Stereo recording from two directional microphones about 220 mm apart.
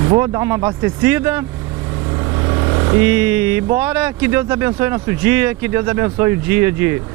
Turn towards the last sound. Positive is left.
turn(degrees=-10)  # may be behind; listen again after turning